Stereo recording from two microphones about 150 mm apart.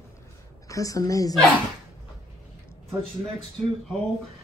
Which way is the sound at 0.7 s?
20° left (ahead or behind).